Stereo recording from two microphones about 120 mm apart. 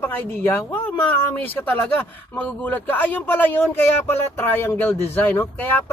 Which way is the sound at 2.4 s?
15° left (ahead or behind).